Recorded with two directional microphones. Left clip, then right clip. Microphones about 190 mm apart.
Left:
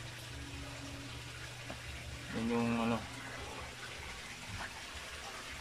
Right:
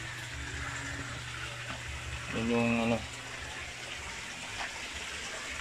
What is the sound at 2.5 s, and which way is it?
Speech, centre (ahead or behind).